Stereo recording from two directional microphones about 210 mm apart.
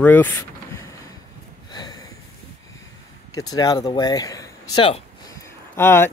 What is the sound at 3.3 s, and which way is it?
Speech, 15° left (ahead or behind).